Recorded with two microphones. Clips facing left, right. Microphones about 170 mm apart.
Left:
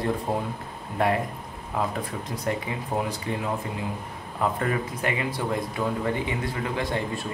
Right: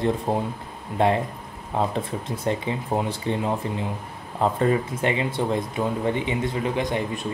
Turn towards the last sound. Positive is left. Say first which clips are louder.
# right 3 dB
turn(degrees=-20)  # may be behind; listen again after turning